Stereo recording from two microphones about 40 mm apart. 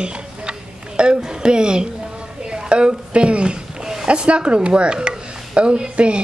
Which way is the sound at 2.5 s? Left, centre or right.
Right.